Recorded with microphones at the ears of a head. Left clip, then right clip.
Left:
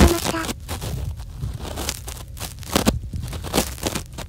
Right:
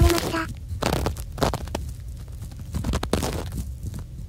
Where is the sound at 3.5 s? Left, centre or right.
Left.